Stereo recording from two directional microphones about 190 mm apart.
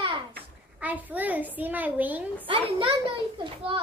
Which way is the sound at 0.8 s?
10° right (ahead or behind).